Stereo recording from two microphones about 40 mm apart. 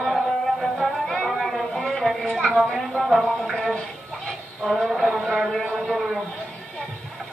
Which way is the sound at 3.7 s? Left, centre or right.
Left.